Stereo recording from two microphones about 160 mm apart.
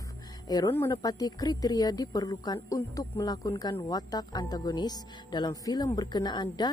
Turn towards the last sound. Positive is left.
turn(degrees=25)  # may be behind; listen again after turning